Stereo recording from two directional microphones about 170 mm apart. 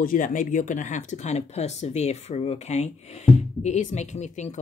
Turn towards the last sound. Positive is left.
turn(degrees=40)  # may be behind; listen again after turning